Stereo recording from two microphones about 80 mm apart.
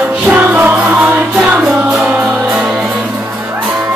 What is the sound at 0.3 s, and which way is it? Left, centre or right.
Music, right.